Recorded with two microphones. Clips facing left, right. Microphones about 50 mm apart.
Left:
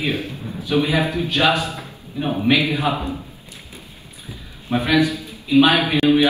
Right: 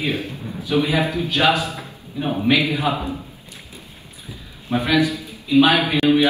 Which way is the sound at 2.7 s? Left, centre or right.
Left.